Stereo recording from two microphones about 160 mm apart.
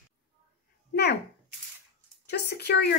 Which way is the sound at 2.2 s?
90° left.